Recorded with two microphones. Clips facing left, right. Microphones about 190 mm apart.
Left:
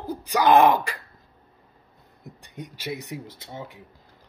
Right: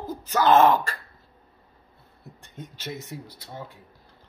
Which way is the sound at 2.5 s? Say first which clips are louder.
Left 3 dB; 15° left (ahead or behind).